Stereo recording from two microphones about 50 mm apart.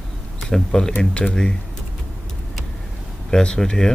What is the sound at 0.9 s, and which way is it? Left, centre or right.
Speech, left.